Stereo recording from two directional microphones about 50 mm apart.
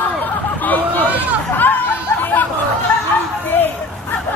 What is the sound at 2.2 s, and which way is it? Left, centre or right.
Chatter, left.